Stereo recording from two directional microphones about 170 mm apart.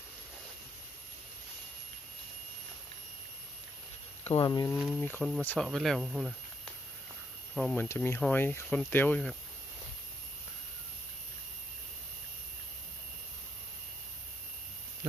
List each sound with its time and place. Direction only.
4.2 s a sound: 35° left (ahead or behind)
4.5 s speech: 25° left (ahead or behind)
4.7 s speech: centre (ahead or behind)
7.9 s speech: 15° left (ahead or behind)